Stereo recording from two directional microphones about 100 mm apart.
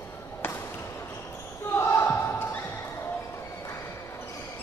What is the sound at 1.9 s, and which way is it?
Basketball bounce, 20° left (ahead or behind).